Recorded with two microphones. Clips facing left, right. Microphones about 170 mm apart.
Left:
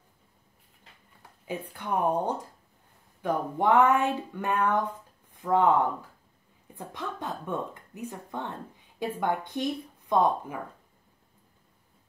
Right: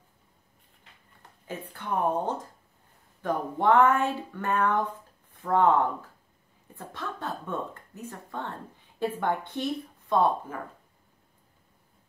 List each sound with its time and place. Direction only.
1.5 s speech: 15° left (ahead or behind)